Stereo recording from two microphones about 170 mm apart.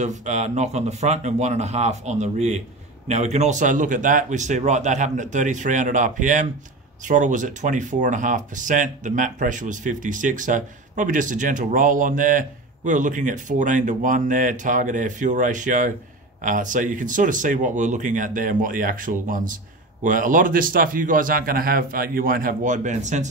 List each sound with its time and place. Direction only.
0.0 s speech: 45° right (ahead or behind)